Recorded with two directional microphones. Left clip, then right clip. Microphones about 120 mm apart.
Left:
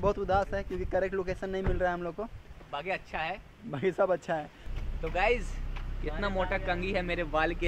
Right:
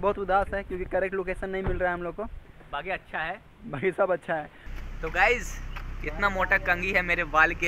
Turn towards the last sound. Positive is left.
turn(degrees=20)  # may be behind; listen again after turning